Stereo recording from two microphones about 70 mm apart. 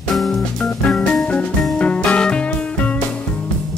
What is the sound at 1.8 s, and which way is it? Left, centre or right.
Music, centre.